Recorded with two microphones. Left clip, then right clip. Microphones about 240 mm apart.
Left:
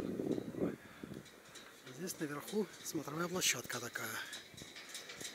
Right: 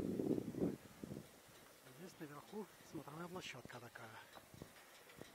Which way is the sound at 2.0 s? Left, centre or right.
Centre.